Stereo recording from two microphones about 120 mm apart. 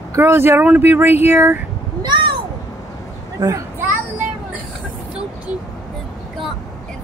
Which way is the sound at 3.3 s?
30° right (ahead or behind).